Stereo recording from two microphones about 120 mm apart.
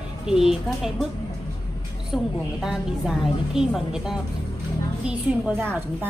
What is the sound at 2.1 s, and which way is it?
A woman's voice, centre (ahead or behind).